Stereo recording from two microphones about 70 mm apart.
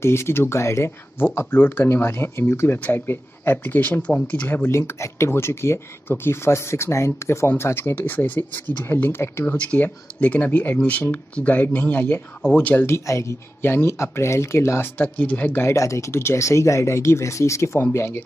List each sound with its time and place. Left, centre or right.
0.0 s speech: left; by 4.6 s centre
4.6 s speech: left
7.9 s speech: left
9.7 s speech: centre
12.8 s speech: left
15.0 s speech: left
15.6 s speech: left